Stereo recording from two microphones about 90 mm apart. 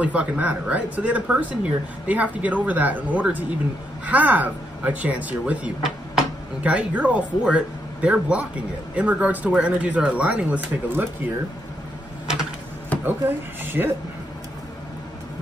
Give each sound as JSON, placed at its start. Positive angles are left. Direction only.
{"t": 0.0, "sound": "speech", "side_deg": -15}
{"t": 12.9, "sound": "a sound", "side_deg": 15}
{"t": 13.7, "sound": "speech", "side_deg": -25}